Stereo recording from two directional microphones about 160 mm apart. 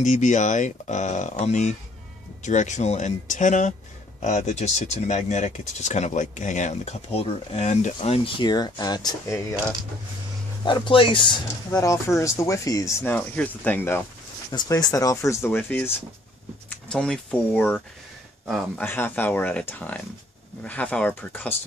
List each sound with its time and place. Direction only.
0.0 s speech: 50° left (ahead or behind)
8.5 s speech: 25° left (ahead or behind)
10.6 s speech: 30° left (ahead or behind); by 14.0 s 10° left (ahead or behind)
14.5 s speech: 25° left (ahead or behind)
16.9 s speech: 5° left (ahead or behind)